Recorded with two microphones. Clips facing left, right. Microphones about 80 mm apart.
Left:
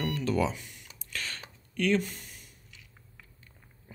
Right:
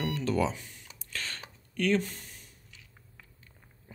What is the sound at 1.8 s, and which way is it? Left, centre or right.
Speech, right.